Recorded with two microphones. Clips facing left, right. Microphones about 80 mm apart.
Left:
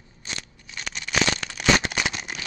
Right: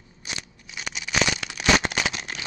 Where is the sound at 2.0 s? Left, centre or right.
Centre.